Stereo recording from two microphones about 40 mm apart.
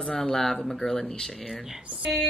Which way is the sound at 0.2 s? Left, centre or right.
Centre.